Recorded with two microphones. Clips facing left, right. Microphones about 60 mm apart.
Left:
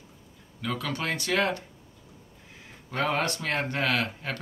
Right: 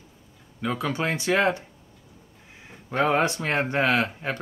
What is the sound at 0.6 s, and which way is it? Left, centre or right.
Speech, centre.